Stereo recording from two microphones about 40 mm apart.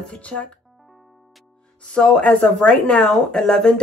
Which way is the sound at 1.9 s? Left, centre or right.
Left.